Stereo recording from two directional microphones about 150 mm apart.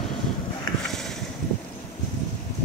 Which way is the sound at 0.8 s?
5° left (ahead or behind).